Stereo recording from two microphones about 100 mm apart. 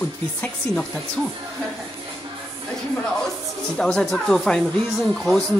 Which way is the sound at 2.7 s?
5° left (ahead or behind).